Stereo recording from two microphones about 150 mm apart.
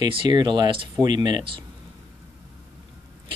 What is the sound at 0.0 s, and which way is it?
A man's voice, 30° right (ahead or behind).